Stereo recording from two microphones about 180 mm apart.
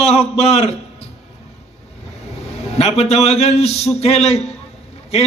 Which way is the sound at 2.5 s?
35° left (ahead or behind).